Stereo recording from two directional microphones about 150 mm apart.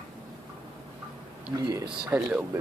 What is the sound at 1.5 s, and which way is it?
Speech, 25° right (ahead or behind).